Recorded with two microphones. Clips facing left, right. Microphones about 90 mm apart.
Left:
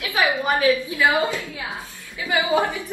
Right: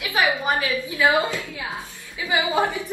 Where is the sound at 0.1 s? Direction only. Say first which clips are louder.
Left 1 dB; 20° right (ahead or behind).